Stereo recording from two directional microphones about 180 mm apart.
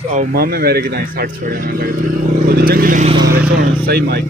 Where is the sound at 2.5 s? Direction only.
55° right (ahead or behind).